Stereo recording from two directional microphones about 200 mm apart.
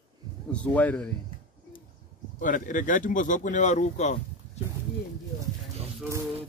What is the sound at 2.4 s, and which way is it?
Speech, 40° left (ahead or behind).